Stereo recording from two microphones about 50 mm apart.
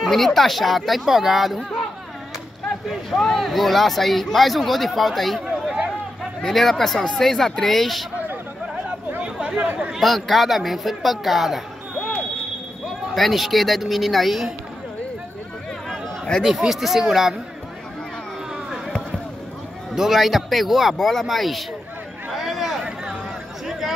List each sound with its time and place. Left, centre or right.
0.0 s speech: centre
2.9 s speech: centre
6.4 s speech: centre
9.2 s chatter: right
9.9 s speech: centre
13.1 s speech: centre
16.4 s speech: centre
20.0 s speech: centre
22.3 s a sound: centre